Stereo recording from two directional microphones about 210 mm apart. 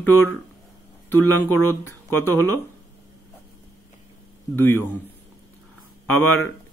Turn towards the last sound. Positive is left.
turn(degrees=10)  # may be behind; listen again after turning